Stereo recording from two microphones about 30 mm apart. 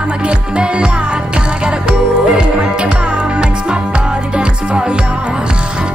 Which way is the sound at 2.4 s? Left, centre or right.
Right.